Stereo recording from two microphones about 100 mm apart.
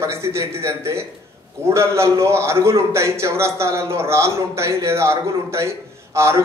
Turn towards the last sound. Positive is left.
turn(degrees=-30)  # may be behind; listen again after turning